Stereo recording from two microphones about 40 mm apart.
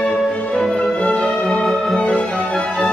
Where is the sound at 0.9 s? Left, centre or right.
Left.